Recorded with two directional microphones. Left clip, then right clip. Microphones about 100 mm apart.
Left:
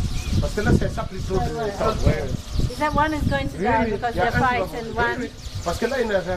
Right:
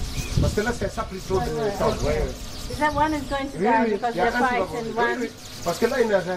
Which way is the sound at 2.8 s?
35° left (ahead or behind).